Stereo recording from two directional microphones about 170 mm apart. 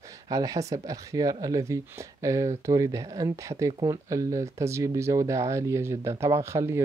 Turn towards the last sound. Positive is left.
turn(degrees=-15)  # may be behind; listen again after turning